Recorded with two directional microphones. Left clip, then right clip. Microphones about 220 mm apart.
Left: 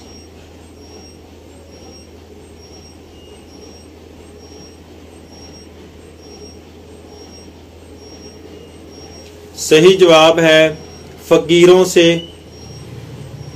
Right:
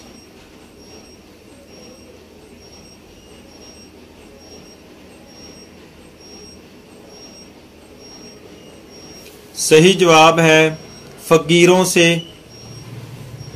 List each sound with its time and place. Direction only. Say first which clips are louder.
9.6 s speech: left 3 dB; 35° right (ahead or behind)